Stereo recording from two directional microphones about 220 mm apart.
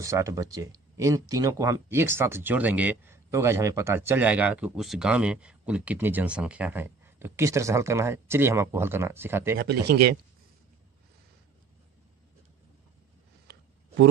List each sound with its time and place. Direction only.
0.0 s speech: 15° right (ahead or behind)
9.6 s speech: 50° right (ahead or behind)